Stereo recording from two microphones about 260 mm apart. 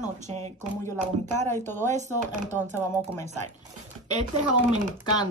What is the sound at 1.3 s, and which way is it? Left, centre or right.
Speech, centre.